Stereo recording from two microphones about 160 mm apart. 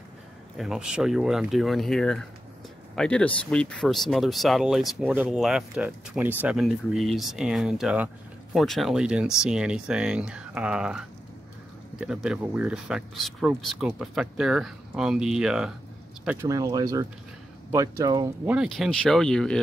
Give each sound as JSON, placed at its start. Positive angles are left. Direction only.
{"t": 0.6, "sound": "speech", "side_deg": -5}
{"t": 16.3, "sound": "speech", "side_deg": -20}
{"t": 18.4, "sound": "speech", "side_deg": -5}